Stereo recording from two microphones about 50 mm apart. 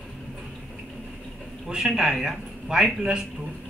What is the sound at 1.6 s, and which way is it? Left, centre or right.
A man's voice, centre.